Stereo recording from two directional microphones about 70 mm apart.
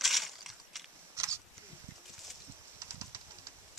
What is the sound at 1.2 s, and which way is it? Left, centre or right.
Wild animals, right.